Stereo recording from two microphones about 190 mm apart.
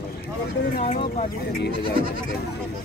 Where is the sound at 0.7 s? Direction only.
40° left (ahead or behind).